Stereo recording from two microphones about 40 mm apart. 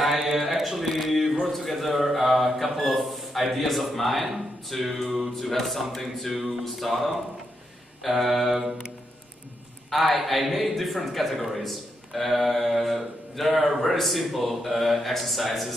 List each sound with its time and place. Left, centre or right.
0.0 s mantra: centre
1.5 s a man's voice: centre
8.0 s a man's voice: centre
9.8 s a man's voice: centre